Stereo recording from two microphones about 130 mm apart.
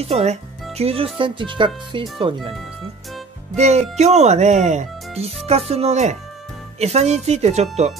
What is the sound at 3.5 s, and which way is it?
Speech, 60° right (ahead or behind).